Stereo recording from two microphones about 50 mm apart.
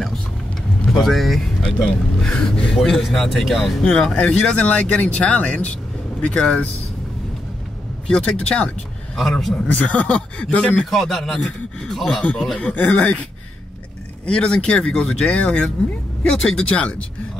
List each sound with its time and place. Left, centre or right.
0.9 s speech: centre
1.6 s speech: centre
4.0 s speech: centre
8.1 s speech: centre
9.7 s speech: left
10.9 s speech: centre
12.2 s speech: left
14.2 s speech: centre
16.3 s speech: centre
16.5 s speech: left